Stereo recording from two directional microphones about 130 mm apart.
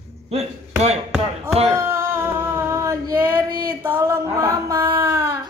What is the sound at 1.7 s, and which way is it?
Female singing, 20° right (ahead or behind).